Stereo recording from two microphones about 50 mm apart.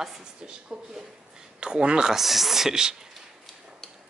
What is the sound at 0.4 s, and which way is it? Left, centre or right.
A man's voice, centre.